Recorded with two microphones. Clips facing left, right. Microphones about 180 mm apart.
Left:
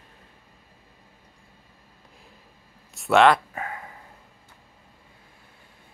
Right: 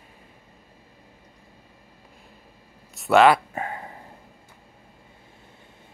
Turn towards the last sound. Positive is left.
turn(degrees=-30)  # may be behind; listen again after turning